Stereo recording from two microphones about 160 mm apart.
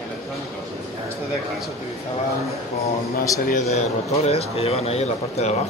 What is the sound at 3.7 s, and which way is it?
Speech, 40° left (ahead or behind).